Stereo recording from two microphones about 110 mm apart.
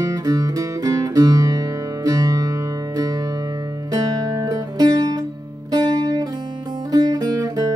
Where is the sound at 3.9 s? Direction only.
35° right (ahead or behind).